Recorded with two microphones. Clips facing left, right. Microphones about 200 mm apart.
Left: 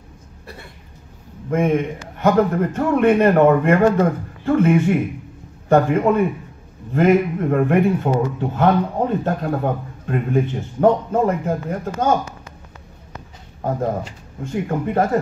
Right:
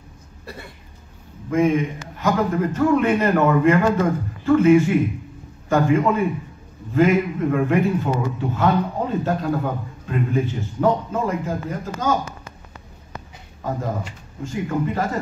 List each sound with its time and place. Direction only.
1.5 s a man's voice: 55° left (ahead or behind)
13.6 s speech: 50° left (ahead or behind)